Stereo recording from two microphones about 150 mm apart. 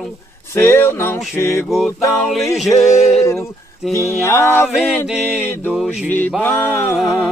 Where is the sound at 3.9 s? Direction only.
20° left (ahead or behind).